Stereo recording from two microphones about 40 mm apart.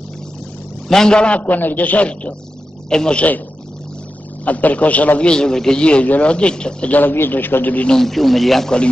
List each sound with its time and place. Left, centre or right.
0.8 s a man's voice: centre; by 1.6 s left
1.6 s a man's voice: left
2.9 s a man's voice: centre
3.2 s a man's voice: left
4.5 s a man's voice: left
5.2 s a man's voice: centre
5.8 s a man's voice: left
6.9 s a man's voice: left
7.9 s a man's voice: centre
8.6 s a man's voice: left